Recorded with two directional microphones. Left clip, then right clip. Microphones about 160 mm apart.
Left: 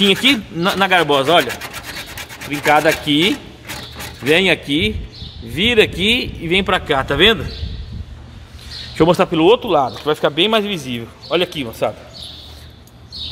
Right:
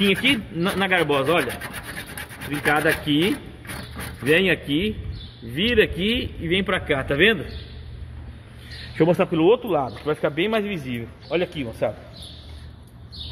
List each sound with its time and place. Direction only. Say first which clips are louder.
0.0 s speech: left 6 dB; 30° left (ahead or behind)
0.7 s speech: left 7 dB; 20° left (ahead or behind)
2.6 s speech: left 7 dB; 15° left (ahead or behind)
8.9 s speech: left 6 dB; 25° left (ahead or behind)